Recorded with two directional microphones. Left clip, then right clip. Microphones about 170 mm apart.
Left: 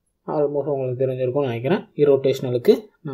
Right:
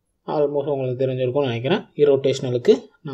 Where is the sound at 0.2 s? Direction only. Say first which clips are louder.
Right 1 dB; 10° left (ahead or behind).